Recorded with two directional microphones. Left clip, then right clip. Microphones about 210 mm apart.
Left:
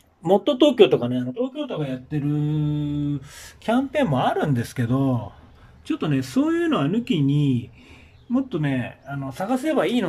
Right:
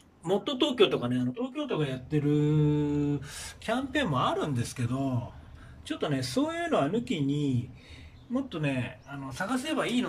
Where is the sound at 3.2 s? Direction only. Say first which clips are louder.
Left 1 dB; 30° left (ahead or behind).